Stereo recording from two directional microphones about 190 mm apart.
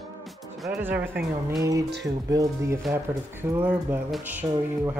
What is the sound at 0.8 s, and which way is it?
Speech, 10° right (ahead or behind).